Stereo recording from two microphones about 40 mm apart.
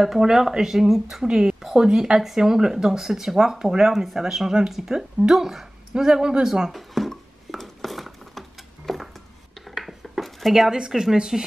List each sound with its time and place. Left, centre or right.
0.0 s speech: centre
1.2 s speech: right
6.9 s a sound: centre
9.8 s dishes: centre
10.7 s speech: centre